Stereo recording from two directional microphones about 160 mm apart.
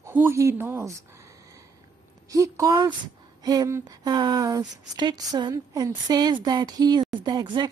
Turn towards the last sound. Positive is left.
turn(degrees=-25)  # may be behind; listen again after turning